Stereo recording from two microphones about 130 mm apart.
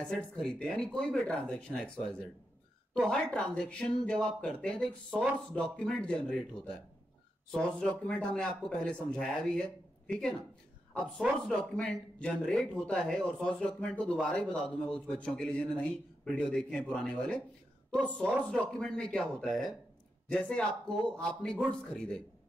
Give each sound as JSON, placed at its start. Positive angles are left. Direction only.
{"t": 0.0, "sound": "speech", "side_deg": 5}